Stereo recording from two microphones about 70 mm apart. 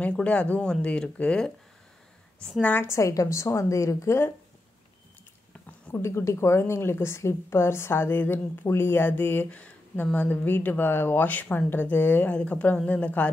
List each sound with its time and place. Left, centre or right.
0.0 s speech: centre
2.6 s speech: left
2.9 s a woman's voice: left
5.9 s a woman's voice: left